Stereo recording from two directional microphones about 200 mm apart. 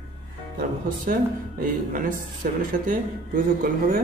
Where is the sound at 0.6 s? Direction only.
45° right (ahead or behind).